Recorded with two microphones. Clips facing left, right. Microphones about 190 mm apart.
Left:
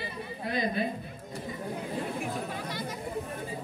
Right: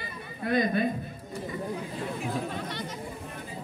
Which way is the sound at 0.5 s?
55° right (ahead or behind).